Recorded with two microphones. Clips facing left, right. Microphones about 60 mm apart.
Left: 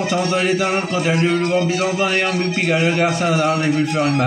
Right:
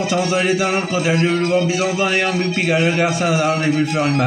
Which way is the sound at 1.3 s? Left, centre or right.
Centre.